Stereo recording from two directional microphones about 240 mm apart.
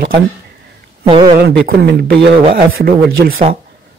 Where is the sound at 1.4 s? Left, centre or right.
Right.